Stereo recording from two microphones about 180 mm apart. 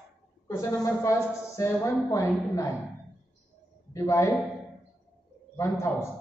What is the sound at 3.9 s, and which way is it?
Speech, 15° left (ahead or behind).